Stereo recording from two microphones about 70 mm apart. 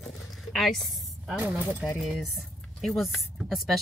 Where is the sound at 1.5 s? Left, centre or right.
Right.